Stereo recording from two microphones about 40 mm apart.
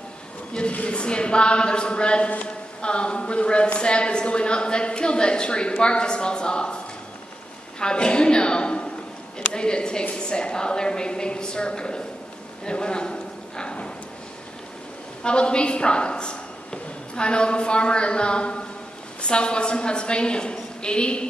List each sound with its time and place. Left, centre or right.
0.5 s speech: left
7.8 s a woman's voice: left
12.6 s a sound: left
15.2 s a woman's voice: left